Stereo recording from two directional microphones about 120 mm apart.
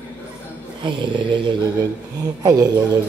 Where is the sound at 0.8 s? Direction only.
40° right (ahead or behind).